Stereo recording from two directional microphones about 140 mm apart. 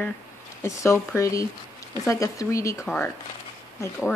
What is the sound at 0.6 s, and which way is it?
Speech, 20° left (ahead or behind).